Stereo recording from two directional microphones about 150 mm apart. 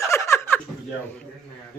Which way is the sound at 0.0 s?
20° left (ahead or behind).